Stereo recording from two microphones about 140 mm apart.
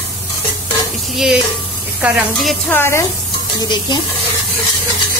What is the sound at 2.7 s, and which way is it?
Speech, 15° left (ahead or behind).